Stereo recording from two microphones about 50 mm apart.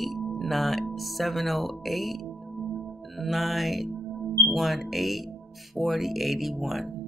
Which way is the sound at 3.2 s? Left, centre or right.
Centre.